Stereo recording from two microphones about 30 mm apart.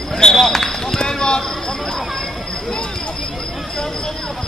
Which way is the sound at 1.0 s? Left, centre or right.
Left.